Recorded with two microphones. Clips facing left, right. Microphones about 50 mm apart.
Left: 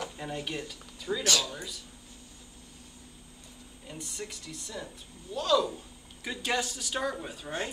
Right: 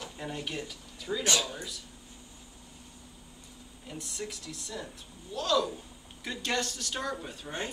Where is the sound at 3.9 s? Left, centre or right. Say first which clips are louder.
Right 1 dB; centre.